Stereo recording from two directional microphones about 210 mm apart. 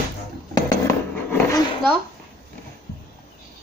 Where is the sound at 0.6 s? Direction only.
15° left (ahead or behind).